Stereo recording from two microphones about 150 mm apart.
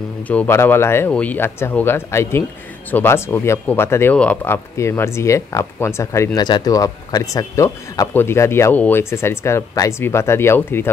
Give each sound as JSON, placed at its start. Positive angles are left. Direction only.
{"t": 0.3, "sound": "speech", "side_deg": 15}